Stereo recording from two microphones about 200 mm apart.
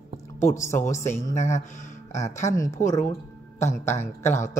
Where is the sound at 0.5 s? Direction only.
15° left (ahead or behind).